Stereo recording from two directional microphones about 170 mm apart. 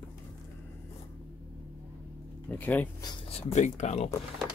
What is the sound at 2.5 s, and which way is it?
Speech, 10° left (ahead or behind).